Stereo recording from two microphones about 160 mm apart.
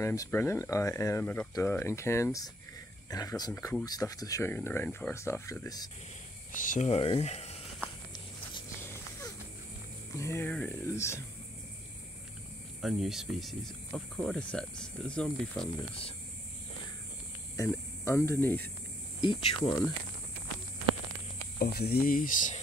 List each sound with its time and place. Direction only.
0.0 s speech: 20° left (ahead or behind)
6.5 s speech: 55° left (ahead or behind)
6.9 s speech: 40° left (ahead or behind)
10.1 s speech: 15° left (ahead or behind)
12.8 s speech: centre (ahead or behind)
15.9 s speech: 35° left (ahead or behind)
17.6 s speech: 15° left (ahead or behind)
19.2 s speech: 35° left (ahead or behind)
21.5 s speech: 75° left (ahead or behind); by 22.6 s 55° left (ahead or behind)